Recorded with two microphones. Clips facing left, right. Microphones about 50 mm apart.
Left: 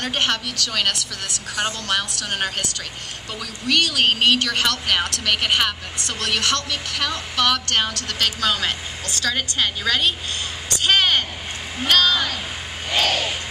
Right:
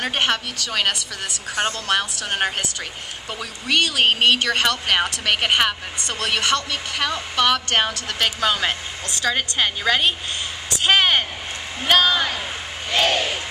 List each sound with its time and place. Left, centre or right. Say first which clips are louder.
0.0 s a woman's voice: right 1 dB; centre